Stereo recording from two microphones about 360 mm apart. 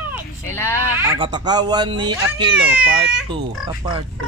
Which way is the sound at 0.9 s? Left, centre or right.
Centre.